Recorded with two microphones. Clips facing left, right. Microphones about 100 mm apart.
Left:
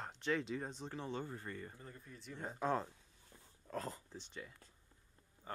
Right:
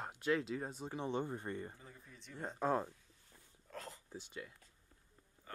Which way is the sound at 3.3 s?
25° left (ahead or behind).